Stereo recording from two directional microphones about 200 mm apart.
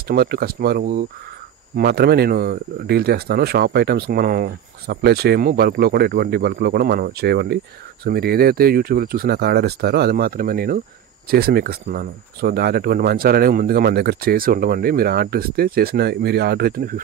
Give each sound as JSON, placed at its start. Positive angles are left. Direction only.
{"t": 0.1, "sound": "speech", "side_deg": -50}